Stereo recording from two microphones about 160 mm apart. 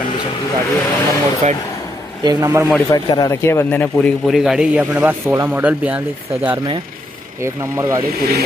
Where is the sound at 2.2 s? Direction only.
20° right (ahead or behind).